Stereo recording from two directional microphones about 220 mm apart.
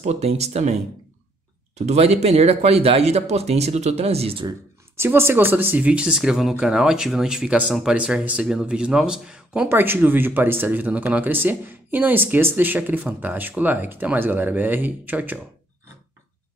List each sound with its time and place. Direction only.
0.0 s speech: 30° right (ahead or behind)
1.8 s speech: 30° right (ahead or behind)
4.9 s speech: 10° right (ahead or behind)